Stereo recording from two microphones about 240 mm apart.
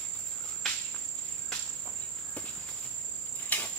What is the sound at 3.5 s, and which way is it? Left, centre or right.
Cricket, centre.